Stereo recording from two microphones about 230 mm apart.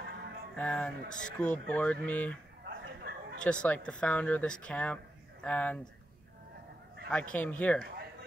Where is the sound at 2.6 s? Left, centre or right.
Right.